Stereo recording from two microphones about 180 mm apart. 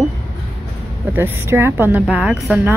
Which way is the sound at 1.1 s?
10° right (ahead or behind).